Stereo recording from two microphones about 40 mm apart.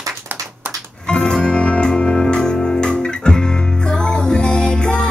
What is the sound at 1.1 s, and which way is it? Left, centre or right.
Music, centre.